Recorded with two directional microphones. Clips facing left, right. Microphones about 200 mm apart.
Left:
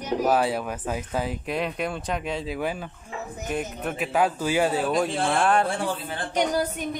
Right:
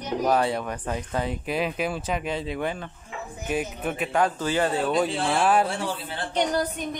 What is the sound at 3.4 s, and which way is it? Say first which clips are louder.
Speech: right 2 dB; 5° right (ahead or behind).